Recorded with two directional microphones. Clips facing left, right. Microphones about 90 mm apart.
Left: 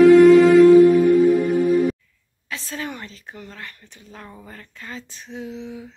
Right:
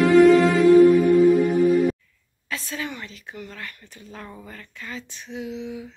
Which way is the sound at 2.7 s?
40° left (ahead or behind).